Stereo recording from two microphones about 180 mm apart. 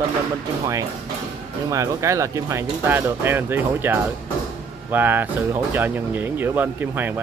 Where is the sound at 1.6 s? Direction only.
15° right (ahead or behind).